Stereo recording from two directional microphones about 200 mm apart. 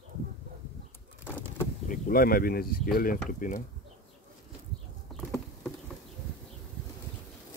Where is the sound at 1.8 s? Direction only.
40° left (ahead or behind).